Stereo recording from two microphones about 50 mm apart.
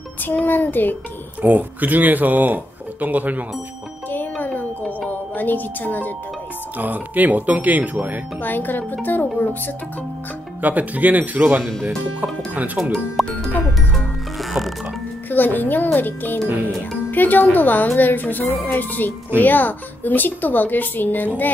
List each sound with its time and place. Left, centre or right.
0.2 s speech: left
1.4 s speech: right
4.1 s music: left
5.3 s speech: left
6.8 s speech: right
8.4 s speech: left
10.6 s speech: right
13.2 s speech: centre
13.9 s music: centre
15.2 s speech: left